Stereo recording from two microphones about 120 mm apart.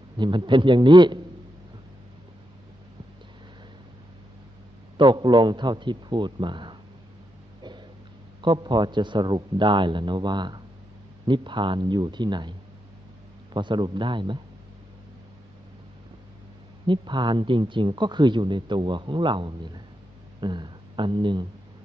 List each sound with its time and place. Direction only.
0.2 s speech: 40° right (ahead or behind)
4.9 s speech: 40° right (ahead or behind)
8.4 s speech: 40° right (ahead or behind)
16.8 s speech: 40° right (ahead or behind)